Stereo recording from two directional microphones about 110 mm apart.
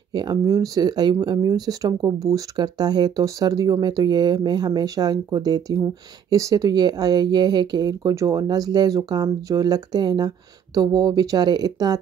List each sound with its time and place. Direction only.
0.1 s speech: 40° right (ahead or behind)